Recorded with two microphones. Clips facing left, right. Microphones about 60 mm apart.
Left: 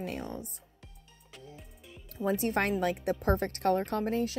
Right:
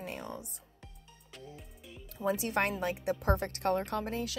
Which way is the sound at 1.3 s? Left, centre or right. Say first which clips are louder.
Right 1 dB; centre.